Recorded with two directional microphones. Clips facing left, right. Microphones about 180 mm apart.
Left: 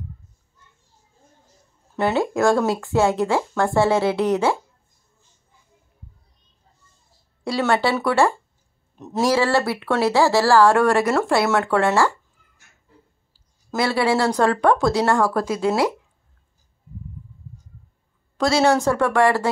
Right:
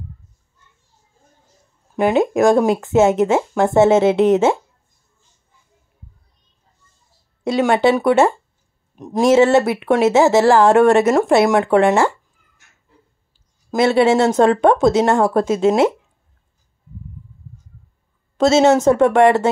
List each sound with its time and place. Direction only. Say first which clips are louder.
2.0 s speech: right 5 dB; 15° right (ahead or behind)
7.4 s speech: right 5 dB; 20° right (ahead or behind)
13.3 s speech: right 4 dB; 20° right (ahead or behind)
18.4 s speech: right 5 dB; 25° right (ahead or behind)